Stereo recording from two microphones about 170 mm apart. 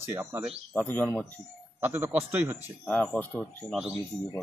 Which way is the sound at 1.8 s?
10° right (ahead or behind).